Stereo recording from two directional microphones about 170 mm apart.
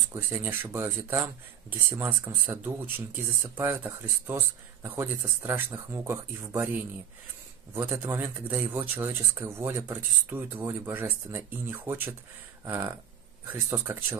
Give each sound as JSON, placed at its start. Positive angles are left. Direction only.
{"t": 0.1, "sound": "speech", "side_deg": -10}